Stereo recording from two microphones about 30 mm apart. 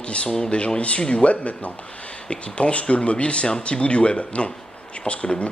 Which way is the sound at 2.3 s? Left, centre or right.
Left.